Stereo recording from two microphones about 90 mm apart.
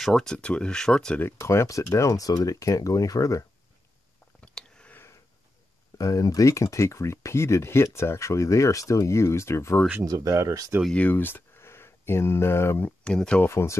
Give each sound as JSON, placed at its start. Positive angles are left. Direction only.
{"t": 0.0, "sound": "speech", "side_deg": 5}
{"t": 1.2, "sound": "speech", "side_deg": 30}
{"t": 4.4, "sound": "a sound", "side_deg": 10}
{"t": 4.9, "sound": "sniff", "side_deg": 30}
{"t": 5.9, "sound": "speech", "side_deg": 40}
{"t": 10.0, "sound": "speech", "side_deg": -35}
{"t": 10.9, "sound": "speech", "side_deg": 15}
{"t": 13.0, "sound": "speech", "side_deg": 10}
{"t": 13.4, "sound": "speech", "side_deg": 30}